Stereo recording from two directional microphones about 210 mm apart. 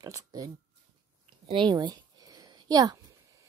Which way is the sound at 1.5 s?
20° right (ahead or behind).